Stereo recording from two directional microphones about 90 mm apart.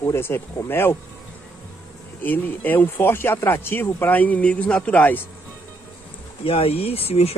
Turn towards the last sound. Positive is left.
turn(degrees=90)